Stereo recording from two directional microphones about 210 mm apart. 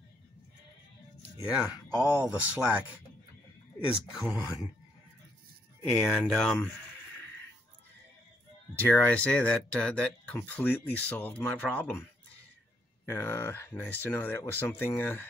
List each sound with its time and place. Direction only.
1.4 s speech: 5° right (ahead or behind)
4.3 s speech: 15° left (ahead or behind)
5.9 s speech: centre (ahead or behind)
8.7 s speech: 10° left (ahead or behind)
13.0 s speech: 10° left (ahead or behind)